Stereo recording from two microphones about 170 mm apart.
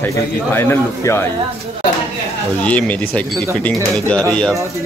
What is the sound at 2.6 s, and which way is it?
Speech, 10° left (ahead or behind).